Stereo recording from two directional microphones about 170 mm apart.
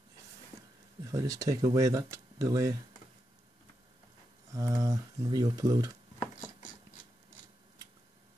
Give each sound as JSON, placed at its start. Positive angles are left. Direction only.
{"t": 1.1, "sound": "speech", "side_deg": -20}
{"t": 4.5, "sound": "speech", "side_deg": -20}